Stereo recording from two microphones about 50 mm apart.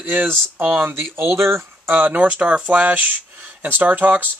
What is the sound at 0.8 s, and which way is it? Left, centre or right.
A man's voice, right.